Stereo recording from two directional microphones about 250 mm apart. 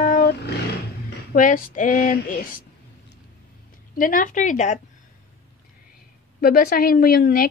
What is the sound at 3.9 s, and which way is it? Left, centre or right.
Speech, left.